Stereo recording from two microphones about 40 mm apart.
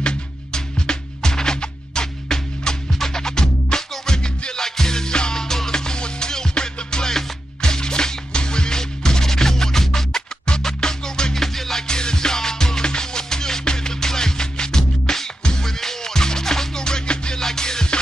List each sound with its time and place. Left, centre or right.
0.0 s music: centre
11.9 s music: centre